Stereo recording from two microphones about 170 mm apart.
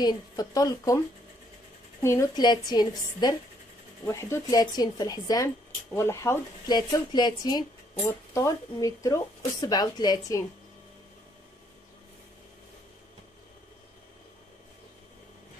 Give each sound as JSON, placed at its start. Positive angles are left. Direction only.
{"t": 0.0, "sound": "speech", "side_deg": 20}
{"t": 2.0, "sound": "speech", "side_deg": 20}